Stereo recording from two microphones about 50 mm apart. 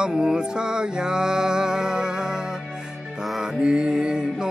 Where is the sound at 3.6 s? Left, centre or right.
Centre.